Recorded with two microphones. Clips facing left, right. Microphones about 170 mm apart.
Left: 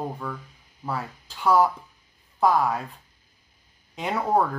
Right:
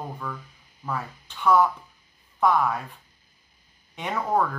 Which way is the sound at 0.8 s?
35° left (ahead or behind).